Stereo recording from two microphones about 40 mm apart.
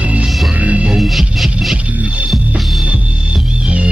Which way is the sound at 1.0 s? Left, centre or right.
Centre.